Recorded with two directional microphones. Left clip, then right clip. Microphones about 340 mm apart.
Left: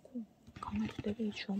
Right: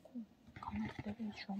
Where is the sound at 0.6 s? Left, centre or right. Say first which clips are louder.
Left 4 dB; left.